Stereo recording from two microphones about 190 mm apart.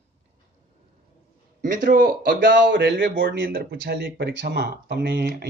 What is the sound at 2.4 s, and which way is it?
Speech, 65° right (ahead or behind).